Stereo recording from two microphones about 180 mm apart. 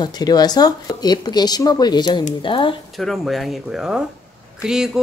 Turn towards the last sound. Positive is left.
turn(degrees=-5)  # may be behind; listen again after turning